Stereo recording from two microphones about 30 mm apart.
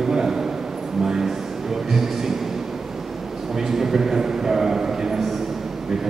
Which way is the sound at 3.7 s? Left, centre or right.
Centre.